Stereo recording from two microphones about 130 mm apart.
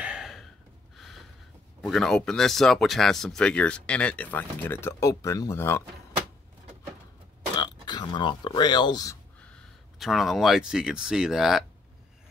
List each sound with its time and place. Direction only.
0.0 s a sound: 5° right (ahead or behind)
1.8 s speech: 5° left (ahead or behind); by 5.9 s 20° left (ahead or behind)
7.5 s speech: 35° left (ahead or behind)
9.4 s speech: 5° left (ahead or behind)